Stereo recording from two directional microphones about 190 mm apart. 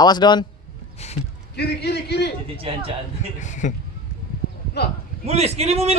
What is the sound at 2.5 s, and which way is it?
Speech, 30° right (ahead or behind).